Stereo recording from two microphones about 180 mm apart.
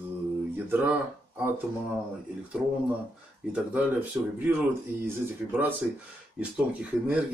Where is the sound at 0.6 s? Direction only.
10° right (ahead or behind).